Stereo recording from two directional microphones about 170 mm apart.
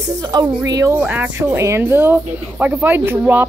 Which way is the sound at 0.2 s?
20° right (ahead or behind).